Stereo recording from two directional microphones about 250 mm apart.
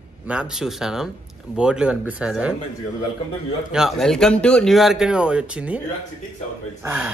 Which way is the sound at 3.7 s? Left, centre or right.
Centre.